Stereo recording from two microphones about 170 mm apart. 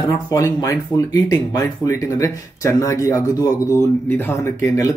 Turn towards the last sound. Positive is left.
turn(degrees=15)  # may be behind; listen again after turning